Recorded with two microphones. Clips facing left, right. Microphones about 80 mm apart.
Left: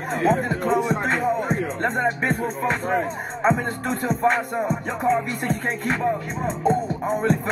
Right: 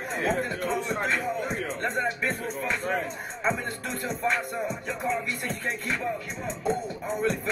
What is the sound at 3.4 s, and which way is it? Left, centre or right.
Music, left.